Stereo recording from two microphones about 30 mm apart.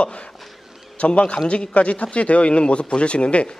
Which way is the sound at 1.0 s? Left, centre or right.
Left.